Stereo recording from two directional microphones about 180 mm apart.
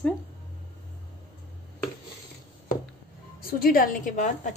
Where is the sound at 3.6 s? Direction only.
50° left (ahead or behind).